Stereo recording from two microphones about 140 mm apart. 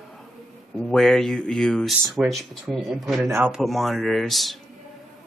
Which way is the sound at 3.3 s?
15° right (ahead or behind).